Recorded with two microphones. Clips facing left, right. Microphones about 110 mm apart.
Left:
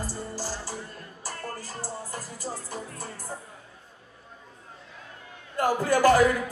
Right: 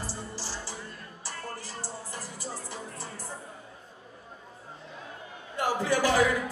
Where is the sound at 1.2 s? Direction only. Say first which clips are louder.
Left 3 dB; 45° left (ahead or behind).